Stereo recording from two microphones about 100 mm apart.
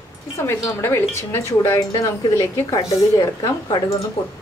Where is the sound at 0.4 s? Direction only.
25° left (ahead or behind).